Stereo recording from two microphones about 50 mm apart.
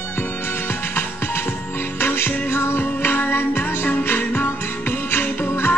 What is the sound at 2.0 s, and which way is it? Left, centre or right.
Music, left.